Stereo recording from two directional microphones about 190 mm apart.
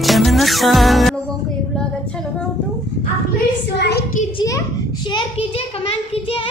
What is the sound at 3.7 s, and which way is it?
Child singing, 60° left (ahead or behind).